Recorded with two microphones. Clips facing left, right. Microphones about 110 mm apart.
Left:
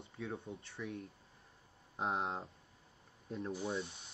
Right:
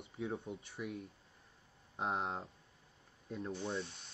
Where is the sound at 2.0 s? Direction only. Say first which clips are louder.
Even; centre (ahead or behind).